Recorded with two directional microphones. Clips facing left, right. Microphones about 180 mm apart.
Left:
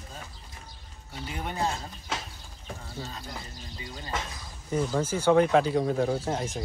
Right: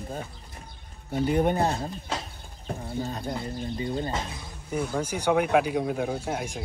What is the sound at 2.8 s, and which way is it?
Speech, 55° right (ahead or behind).